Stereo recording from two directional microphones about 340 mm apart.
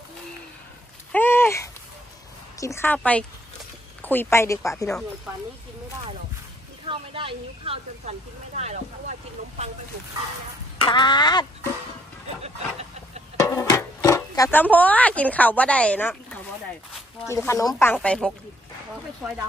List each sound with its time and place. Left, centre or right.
1.1 s a sound: centre
2.6 s a woman's voice: centre
6.9 s speech: centre
10.8 s speech: centre
13.4 s a woman's voice: centre